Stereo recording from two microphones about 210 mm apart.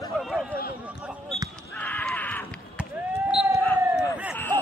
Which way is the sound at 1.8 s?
5° left (ahead or behind).